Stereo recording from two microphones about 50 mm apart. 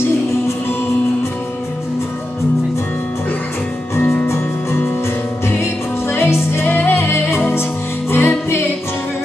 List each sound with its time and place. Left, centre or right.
3.9 s music: left
4.3 s music: left
6.0 s music: left